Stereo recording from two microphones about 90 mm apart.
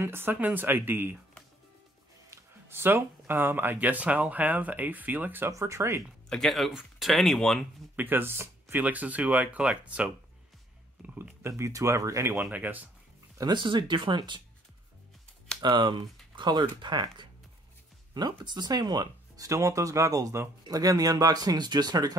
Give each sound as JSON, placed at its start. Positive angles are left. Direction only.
{"t": 0.0, "sound": "speech", "side_deg": -25}
{"t": 2.3, "sound": "speech", "side_deg": -25}
{"t": 5.5, "sound": "speech", "side_deg": -35}
{"t": 6.2, "sound": "speech", "side_deg": 5}
{"t": 7.9, "sound": "speech", "side_deg": -20}
{"t": 11.1, "sound": "speech", "side_deg": -30}
{"t": 13.4, "sound": "speech", "side_deg": -60}
{"t": 15.6, "sound": "speech", "side_deg": -60}